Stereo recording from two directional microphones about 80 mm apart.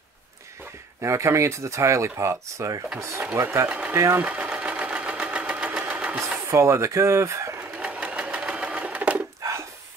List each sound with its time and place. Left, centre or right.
1.0 s speech: right
3.6 s speech: centre
3.9 s speech: right
4.2 s sewing machine: centre
6.5 s speech: right
7.9 s sewing machine: centre
9.4 s a sound: right